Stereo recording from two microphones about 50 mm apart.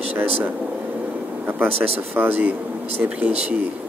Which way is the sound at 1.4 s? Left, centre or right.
Right.